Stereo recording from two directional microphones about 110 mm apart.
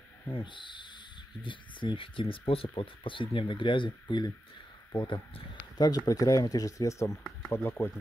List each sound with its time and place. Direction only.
0.3 s speech: 45° left (ahead or behind); by 7.9 s 20° left (ahead or behind)